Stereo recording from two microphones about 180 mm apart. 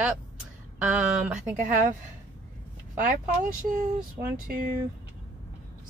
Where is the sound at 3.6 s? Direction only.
50° right (ahead or behind).